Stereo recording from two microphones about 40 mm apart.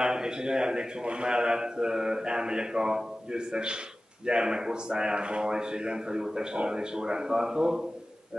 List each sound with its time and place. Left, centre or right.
0.0 s a man's voice: centre